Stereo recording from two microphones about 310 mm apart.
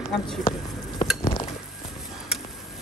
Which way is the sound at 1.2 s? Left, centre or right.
Centre.